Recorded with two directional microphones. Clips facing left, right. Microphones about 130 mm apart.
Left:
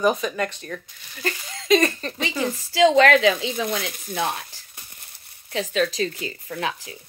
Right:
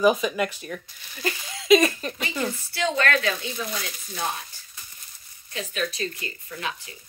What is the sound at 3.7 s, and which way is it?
Speech, 60° left (ahead or behind).